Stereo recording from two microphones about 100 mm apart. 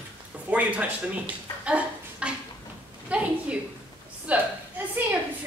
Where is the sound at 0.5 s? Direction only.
15° right (ahead or behind).